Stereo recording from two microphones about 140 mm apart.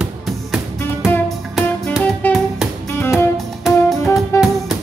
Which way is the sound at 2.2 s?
15° left (ahead or behind).